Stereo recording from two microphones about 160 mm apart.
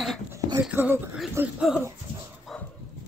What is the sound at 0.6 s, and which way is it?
Speech, 10° right (ahead or behind).